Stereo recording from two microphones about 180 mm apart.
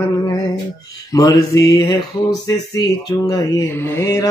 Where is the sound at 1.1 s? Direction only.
20° left (ahead or behind).